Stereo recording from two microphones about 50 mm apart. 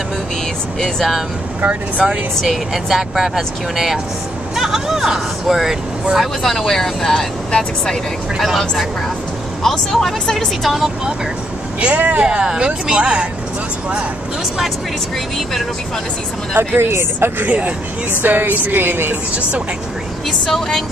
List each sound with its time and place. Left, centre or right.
0.7 s speech: centre
1.7 s speech: right
2.4 s speech: centre
6.4 s speech: centre
8.4 s speech: centre
11.8 s speech: right
12.2 s speech: centre
16.5 s speech: right
17.5 s speech: right
20.2 s speech: centre